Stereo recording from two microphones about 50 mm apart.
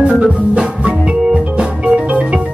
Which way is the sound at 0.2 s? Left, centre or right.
Right.